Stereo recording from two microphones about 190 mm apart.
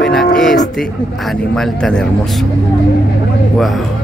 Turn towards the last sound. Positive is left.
turn(degrees=0)  # may be behind; listen again after turning